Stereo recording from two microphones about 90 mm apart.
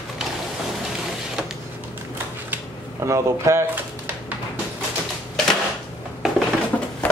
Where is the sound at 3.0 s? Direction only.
35° right (ahead or behind).